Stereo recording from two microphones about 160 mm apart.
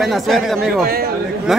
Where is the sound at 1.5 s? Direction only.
5° right (ahead or behind).